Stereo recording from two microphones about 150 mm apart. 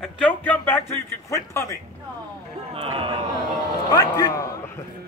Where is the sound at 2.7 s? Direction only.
40° right (ahead or behind).